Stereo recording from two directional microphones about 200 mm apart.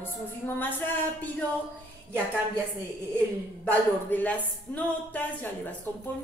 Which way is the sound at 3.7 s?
10° left (ahead or behind).